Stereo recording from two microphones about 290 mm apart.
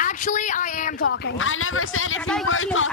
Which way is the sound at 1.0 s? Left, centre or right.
Left.